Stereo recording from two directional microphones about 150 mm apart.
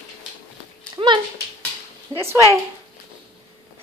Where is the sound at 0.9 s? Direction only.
30° right (ahead or behind).